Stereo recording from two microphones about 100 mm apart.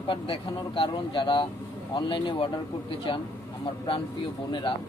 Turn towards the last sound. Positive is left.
turn(degrees=50)  # may be behind; listen again after turning